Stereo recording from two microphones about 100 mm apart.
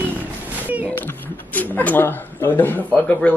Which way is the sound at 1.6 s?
15° left (ahead or behind).